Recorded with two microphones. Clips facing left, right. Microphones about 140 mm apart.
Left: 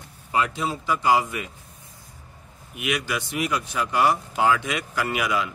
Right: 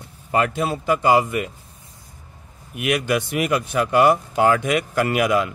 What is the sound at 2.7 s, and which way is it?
Speech, 50° right (ahead or behind).